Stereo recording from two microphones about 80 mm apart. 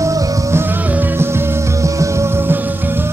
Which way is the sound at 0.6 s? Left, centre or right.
Right.